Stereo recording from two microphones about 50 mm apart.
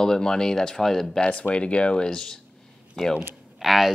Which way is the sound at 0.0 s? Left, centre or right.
Centre.